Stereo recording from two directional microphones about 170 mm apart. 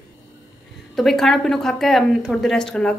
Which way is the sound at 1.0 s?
Centre (ahead or behind).